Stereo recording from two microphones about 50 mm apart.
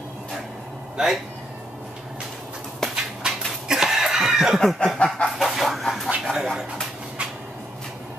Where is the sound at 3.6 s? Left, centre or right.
Centre.